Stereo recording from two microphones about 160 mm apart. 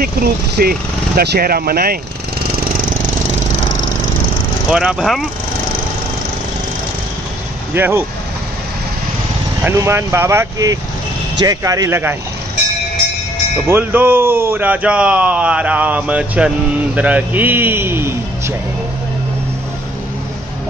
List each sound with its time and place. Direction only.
0.0 s speech: 70° right (ahead or behind)
4.6 s speech: 5° right (ahead or behind)
7.7 s speech: 15° right (ahead or behind)
9.6 s speech: 15° right (ahead or behind)
13.7 s speech: 15° right (ahead or behind)